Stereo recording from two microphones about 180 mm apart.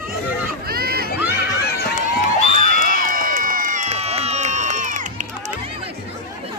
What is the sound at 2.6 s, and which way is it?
Crowd, 50° right (ahead or behind).